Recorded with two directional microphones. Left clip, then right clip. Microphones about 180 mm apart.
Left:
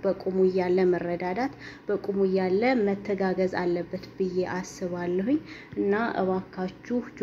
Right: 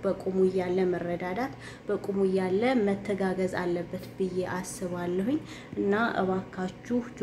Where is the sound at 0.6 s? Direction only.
15° left (ahead or behind).